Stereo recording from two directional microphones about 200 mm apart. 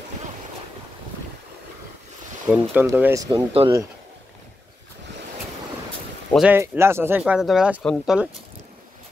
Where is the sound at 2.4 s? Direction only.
10° right (ahead or behind).